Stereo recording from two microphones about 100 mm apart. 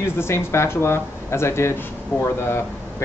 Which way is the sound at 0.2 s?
25° left (ahead or behind).